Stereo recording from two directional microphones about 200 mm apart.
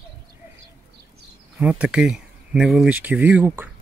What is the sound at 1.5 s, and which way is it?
Speech, 5° right (ahead or behind).